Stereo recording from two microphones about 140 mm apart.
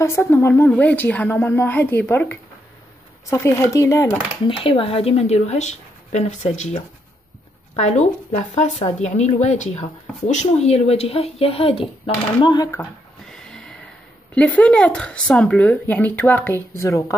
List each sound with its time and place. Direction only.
0.0 s speech: 20° left (ahead or behind)
4.5 s speech: 40° left (ahead or behind)
13.3 s a sound: 5° left (ahead or behind)
14.3 s speech: 10° left (ahead or behind)